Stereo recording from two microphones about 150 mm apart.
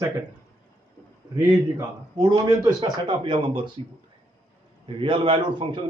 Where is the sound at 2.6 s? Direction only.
30° right (ahead or behind).